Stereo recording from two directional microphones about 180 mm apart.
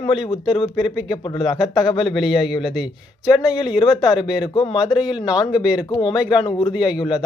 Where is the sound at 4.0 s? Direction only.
20° left (ahead or behind).